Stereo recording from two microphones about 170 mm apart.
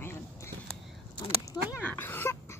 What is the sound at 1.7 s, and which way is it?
Speech, 10° left (ahead or behind).